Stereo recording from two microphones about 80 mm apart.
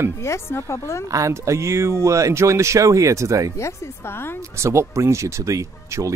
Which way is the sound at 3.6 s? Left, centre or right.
Left.